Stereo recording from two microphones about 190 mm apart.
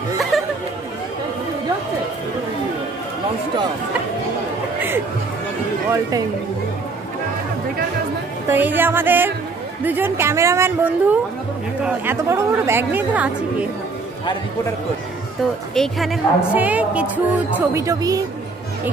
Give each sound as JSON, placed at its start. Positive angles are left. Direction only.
{"t": 0.3, "sound": "chatter", "side_deg": 0}
{"t": 5.9, "sound": "a woman's voice", "side_deg": -15}
{"t": 8.5, "sound": "a woman's voice", "side_deg": -10}
{"t": 15.7, "sound": "a woman's voice", "side_deg": 0}